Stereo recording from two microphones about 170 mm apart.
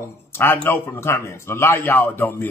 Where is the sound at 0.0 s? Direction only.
15° left (ahead or behind).